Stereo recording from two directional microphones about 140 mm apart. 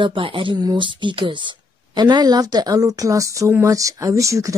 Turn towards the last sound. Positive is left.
turn(degrees=-20)  # may be behind; listen again after turning